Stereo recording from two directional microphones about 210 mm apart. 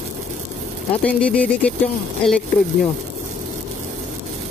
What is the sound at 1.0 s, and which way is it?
Speech, 5° left (ahead or behind).